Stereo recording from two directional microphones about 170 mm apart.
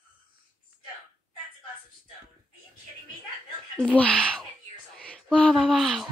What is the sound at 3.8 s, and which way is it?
Speech, 5° left (ahead or behind).